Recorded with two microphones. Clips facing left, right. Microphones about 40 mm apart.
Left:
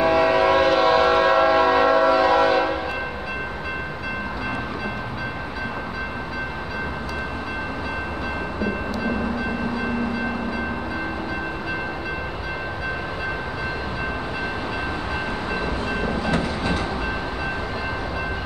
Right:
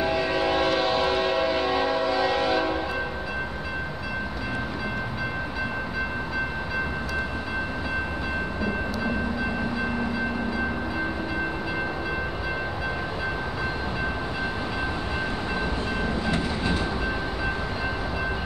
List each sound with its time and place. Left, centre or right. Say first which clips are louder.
0.0 s train: left 7 dB; left
15.6 s train: left 3 dB; left